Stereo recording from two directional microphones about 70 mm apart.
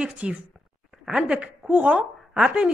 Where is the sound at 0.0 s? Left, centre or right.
Centre.